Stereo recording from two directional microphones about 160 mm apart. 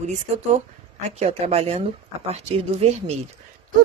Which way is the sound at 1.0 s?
45° right (ahead or behind).